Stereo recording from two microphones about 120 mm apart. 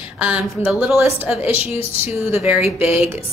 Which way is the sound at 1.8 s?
55° left (ahead or behind).